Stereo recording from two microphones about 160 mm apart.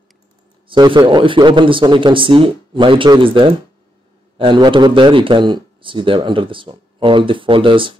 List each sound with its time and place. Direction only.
0.7 s speech: 30° right (ahead or behind)